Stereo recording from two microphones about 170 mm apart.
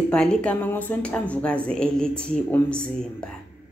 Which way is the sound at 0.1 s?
5° left (ahead or behind).